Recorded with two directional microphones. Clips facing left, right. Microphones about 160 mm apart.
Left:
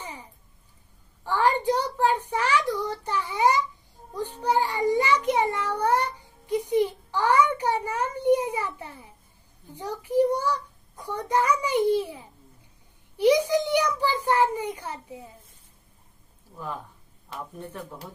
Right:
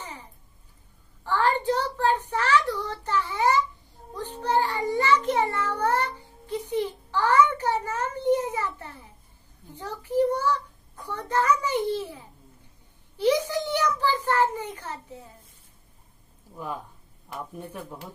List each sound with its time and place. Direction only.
1.2 s a sound: 15° left (ahead or behind)
4.1 s child singing: 10° left (ahead or behind)
9.8 s a child's voice: 15° left (ahead or behind)
16.5 s speech: 15° right (ahead or behind)